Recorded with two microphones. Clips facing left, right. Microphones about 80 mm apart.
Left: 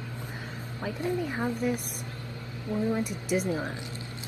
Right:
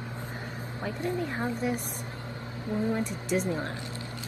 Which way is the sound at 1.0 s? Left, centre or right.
Centre.